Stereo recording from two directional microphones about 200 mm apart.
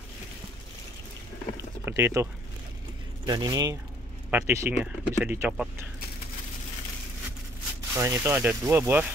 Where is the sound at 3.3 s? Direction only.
20° right (ahead or behind).